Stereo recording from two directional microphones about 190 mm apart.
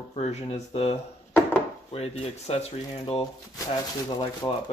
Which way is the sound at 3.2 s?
20° left (ahead or behind).